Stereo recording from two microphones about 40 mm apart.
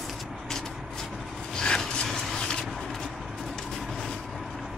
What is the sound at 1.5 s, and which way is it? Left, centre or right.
Rub, centre.